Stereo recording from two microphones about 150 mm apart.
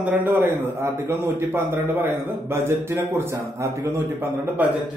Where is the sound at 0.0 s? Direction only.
10° right (ahead or behind).